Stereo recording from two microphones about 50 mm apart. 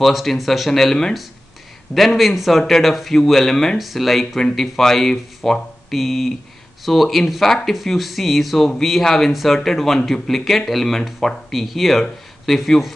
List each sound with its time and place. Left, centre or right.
0.0 s speech: centre
2.0 s speech: centre